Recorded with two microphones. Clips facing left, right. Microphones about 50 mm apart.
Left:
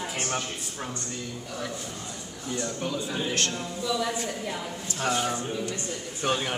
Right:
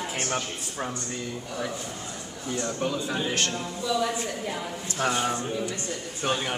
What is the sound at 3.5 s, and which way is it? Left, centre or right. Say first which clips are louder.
Speech: right 1 dB; centre.